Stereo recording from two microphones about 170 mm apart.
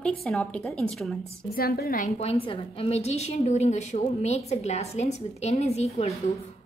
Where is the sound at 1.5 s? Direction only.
65° left (ahead or behind).